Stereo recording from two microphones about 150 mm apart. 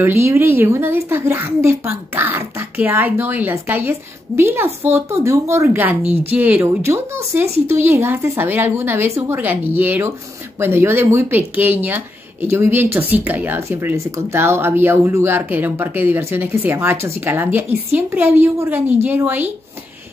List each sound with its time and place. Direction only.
0.0 s speech: 15° right (ahead or behind)